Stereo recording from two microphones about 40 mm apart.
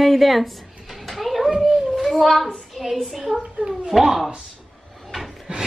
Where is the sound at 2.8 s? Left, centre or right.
Centre.